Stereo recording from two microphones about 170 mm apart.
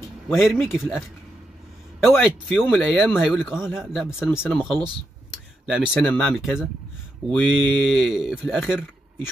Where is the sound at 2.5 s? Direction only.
10° left (ahead or behind).